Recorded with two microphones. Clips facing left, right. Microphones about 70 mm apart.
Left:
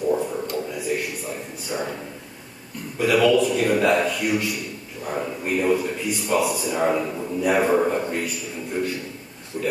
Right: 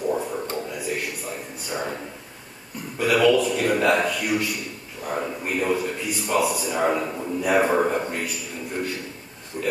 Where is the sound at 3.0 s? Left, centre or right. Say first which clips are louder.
Left 1 dB; centre.